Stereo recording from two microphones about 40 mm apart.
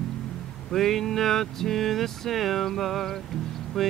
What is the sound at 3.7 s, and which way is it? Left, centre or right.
Mantra, centre.